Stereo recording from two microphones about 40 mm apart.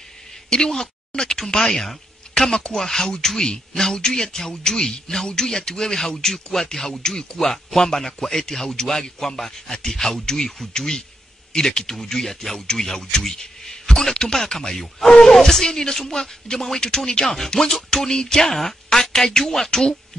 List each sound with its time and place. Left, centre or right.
0.5 s a man's voice: centre
14.8 s a man's voice: centre
17.5 s music: centre
17.8 s a man's voice: centre